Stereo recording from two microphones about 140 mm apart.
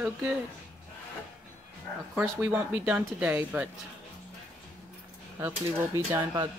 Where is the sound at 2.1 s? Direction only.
10° right (ahead or behind).